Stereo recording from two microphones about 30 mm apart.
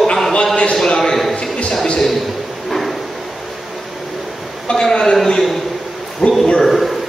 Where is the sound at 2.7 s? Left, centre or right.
Centre.